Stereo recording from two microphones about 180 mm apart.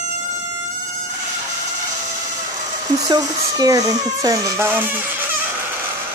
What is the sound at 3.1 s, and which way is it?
Speech, 20° right (ahead or behind).